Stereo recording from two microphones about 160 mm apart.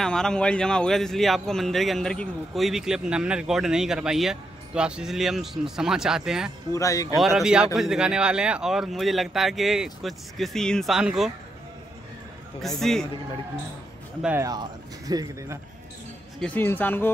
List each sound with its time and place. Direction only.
0.0 s a man's voice: 5° left (ahead or behind)
6.7 s speech: 20° left (ahead or behind)
7.2 s a man's voice: centre (ahead or behind)
12.6 s a man's voice: centre (ahead or behind)
14.4 s speech: 25° right (ahead or behind)
16.3 s speech: 10° left (ahead or behind)